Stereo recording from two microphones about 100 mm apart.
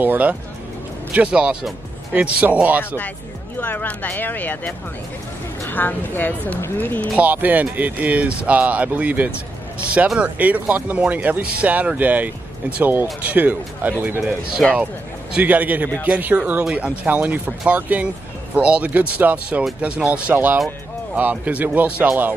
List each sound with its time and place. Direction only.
0.0 s speech: 15° right (ahead or behind)
3.5 s speech: 15° left (ahead or behind)
7.2 s speech: 15° right (ahead or behind)
14.6 s speech: 5° left (ahead or behind)
15.3 s speech: 15° right (ahead or behind)